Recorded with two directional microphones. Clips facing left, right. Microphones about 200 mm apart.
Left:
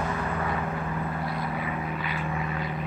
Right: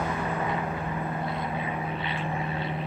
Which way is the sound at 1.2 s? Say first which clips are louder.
Even; 20° right (ahead or behind).